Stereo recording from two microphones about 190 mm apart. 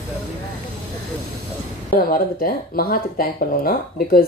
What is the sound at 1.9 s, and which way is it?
Speech, 50° left (ahead or behind).